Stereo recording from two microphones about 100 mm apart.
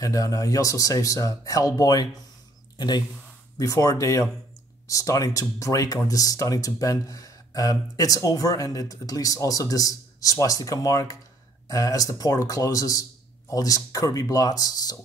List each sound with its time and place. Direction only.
0.0 s speech: 35° left (ahead or behind)
3.5 s speech: 35° left (ahead or behind)